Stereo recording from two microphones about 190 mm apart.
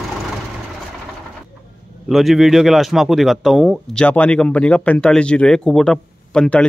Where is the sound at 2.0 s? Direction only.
Centre (ahead or behind).